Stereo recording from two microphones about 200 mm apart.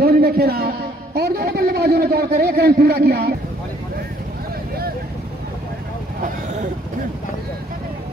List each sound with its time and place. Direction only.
0.0 s a sound: 50° right (ahead or behind)
1.1 s a man's voice: 50° right (ahead or behind)
6.2 s vehicle: 35° right (ahead or behind)